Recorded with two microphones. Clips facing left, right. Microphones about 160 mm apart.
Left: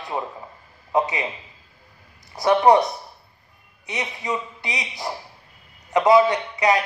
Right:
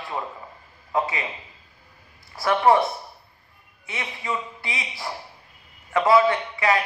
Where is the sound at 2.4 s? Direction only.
20° left (ahead or behind).